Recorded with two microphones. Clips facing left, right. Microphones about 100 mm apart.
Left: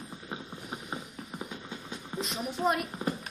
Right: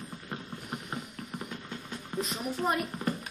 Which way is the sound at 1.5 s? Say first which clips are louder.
Even; 10° left (ahead or behind).